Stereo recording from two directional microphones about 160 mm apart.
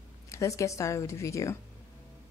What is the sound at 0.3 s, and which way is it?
Speech, 20° left (ahead or behind).